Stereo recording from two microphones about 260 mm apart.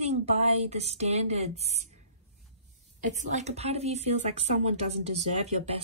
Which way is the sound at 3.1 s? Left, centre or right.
Right.